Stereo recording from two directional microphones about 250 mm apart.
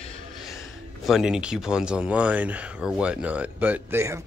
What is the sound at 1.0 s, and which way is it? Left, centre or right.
Speech, centre.